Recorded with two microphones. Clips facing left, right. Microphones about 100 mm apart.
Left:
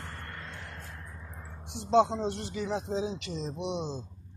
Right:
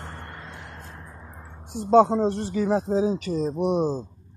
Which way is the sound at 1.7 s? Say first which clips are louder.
Right 7 dB; 45° right (ahead or behind).